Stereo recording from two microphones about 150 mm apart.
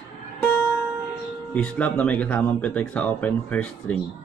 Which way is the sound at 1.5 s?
10° left (ahead or behind).